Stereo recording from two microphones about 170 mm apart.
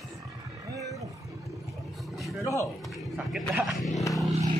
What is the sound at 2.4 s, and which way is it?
Speech, 15° left (ahead or behind).